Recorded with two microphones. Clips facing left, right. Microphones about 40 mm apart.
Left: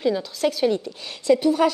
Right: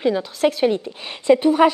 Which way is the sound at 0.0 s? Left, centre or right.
Right.